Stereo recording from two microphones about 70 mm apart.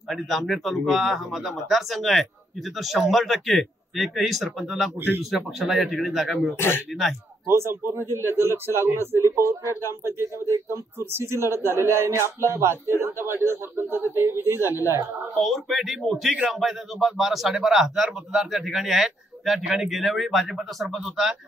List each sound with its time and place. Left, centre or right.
0.1 s speech: centre
4.9 s speech: right
5.2 s speech: centre
7.4 s a man's voice: right
15.3 s speech: centre